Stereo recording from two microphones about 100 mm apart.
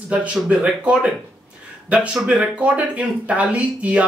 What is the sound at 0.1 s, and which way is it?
Speech, 10° right (ahead or behind).